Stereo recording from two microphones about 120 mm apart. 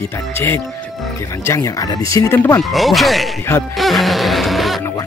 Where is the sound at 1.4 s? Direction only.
25° left (ahead or behind).